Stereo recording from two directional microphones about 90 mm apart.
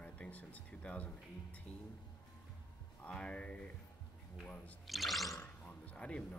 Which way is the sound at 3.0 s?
15° left (ahead or behind).